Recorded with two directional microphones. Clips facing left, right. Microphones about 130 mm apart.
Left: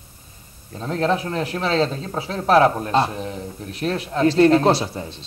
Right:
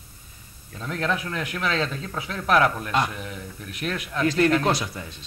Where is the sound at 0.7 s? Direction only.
35° left (ahead or behind).